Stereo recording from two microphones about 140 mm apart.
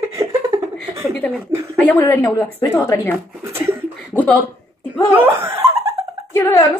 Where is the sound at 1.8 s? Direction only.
10° left (ahead or behind).